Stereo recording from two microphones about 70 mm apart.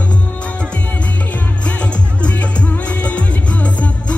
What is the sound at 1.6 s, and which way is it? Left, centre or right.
Music, centre.